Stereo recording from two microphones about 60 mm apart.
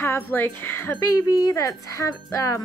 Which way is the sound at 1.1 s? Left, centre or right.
Left.